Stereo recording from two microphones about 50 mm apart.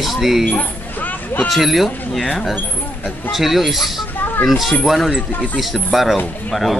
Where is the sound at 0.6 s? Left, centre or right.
Left.